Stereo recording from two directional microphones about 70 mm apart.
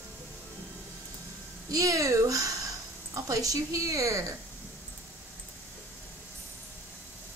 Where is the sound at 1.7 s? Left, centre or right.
Right.